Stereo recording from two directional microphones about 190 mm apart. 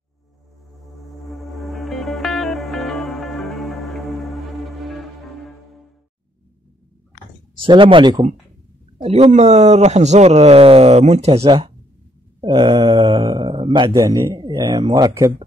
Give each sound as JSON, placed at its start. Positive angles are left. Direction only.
{"t": 1.0, "sound": "music", "side_deg": 0}
{"t": 7.5, "sound": "speech", "side_deg": -25}